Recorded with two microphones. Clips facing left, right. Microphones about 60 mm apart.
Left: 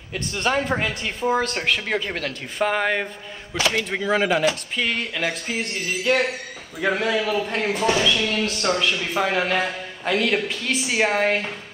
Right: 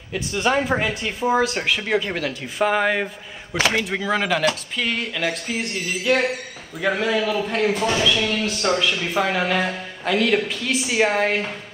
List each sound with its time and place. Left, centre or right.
0.1 s speech: centre